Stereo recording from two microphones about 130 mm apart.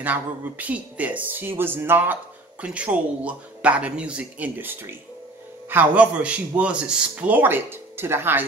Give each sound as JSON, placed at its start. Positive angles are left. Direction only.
{"t": 0.0, "sound": "a man's voice", "side_deg": -15}